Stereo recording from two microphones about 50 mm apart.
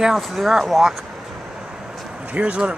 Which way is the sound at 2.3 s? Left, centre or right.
Right.